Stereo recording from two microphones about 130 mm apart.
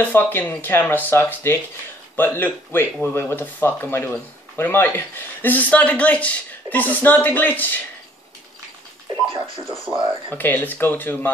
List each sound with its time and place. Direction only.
0.0 s speech: 15° left (ahead or behind)
10.3 s speech: 15° left (ahead or behind)